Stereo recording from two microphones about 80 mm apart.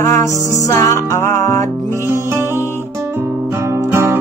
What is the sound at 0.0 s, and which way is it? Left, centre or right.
Music, left.